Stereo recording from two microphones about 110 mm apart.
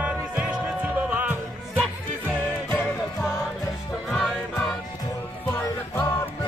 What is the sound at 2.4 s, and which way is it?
Music, 15° left (ahead or behind).